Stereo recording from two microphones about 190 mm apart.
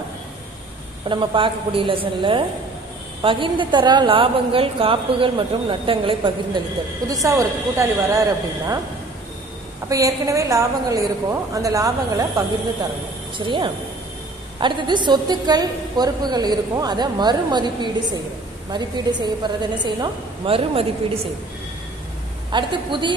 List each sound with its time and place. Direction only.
1.0 s a woman's voice: 25° right (ahead or behind)
9.8 s a woman's voice: 15° right (ahead or behind)
22.5 s a woman's voice: 25° right (ahead or behind)